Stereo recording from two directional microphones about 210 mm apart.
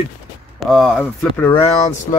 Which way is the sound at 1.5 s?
30° left (ahead or behind).